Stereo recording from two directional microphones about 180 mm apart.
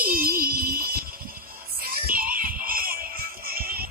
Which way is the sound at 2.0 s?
50° right (ahead or behind).